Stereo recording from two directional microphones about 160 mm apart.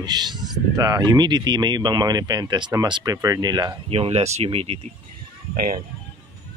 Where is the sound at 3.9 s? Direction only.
40° right (ahead or behind).